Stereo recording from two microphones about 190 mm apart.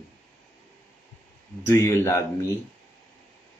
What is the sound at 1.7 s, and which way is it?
Speech, 15° left (ahead or behind).